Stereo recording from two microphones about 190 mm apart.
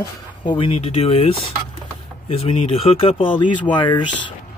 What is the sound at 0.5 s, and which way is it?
Speech, 30° left (ahead or behind).